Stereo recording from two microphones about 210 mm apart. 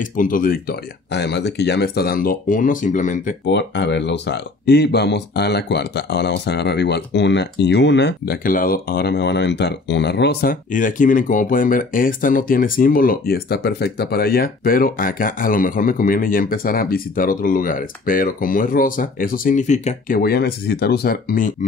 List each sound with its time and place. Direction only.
0.0 s speech: 40° left (ahead or behind)
3.4 s speech: 55° left (ahead or behind); by 20.2 s 35° left (ahead or behind)
20.2 s speech: 45° left (ahead or behind)